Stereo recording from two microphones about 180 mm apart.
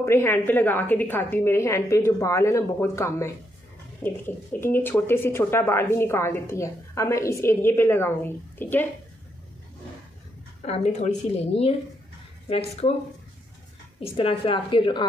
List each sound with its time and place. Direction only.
0.0 s speech: 15° left (ahead or behind)
10.6 s a woman's voice: 40° left (ahead or behind)
13.9 s a woman's voice: 30° left (ahead or behind)